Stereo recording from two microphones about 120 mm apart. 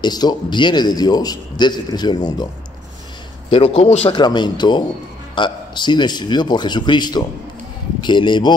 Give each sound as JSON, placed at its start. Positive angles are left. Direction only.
{"t": 0.0, "sound": "a man's voice", "side_deg": 35}
{"t": 3.4, "sound": "a man's voice", "side_deg": 55}
{"t": 4.1, "sound": "a man's voice", "side_deg": 40}